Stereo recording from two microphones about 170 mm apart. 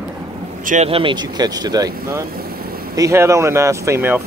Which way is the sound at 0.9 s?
30° right (ahead or behind).